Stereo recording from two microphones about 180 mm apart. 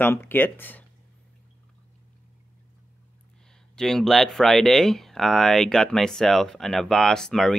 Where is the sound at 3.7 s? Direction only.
5° left (ahead or behind).